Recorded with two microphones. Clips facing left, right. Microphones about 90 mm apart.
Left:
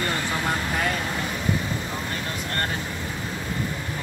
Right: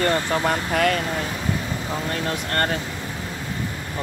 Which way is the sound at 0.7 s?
60° right (ahead or behind).